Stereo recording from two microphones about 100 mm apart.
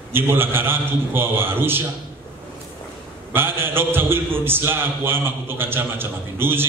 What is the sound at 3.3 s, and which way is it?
A man's voice, 20° right (ahead or behind).